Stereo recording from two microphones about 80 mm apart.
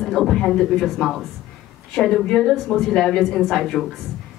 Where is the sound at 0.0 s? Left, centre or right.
Centre.